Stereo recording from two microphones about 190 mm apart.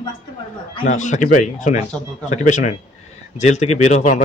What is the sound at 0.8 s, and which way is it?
Speech, 40° left (ahead or behind).